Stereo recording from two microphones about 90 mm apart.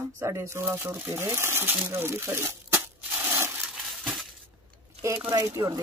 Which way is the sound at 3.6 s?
5° right (ahead or behind).